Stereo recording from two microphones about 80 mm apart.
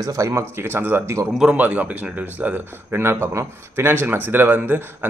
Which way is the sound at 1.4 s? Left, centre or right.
Centre.